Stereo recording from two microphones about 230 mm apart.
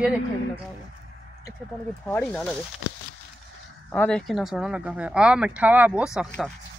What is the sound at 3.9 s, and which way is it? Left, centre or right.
Speech, centre.